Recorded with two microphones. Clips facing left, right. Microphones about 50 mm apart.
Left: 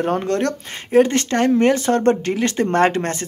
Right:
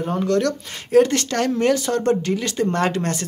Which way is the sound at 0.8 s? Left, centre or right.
Left.